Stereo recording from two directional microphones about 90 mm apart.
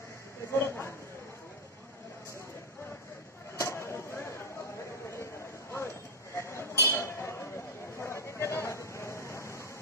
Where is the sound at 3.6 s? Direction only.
30° left (ahead or behind).